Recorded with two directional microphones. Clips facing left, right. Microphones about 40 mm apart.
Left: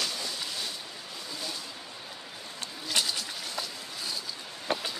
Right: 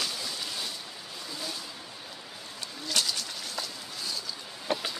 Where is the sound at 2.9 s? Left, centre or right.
Left.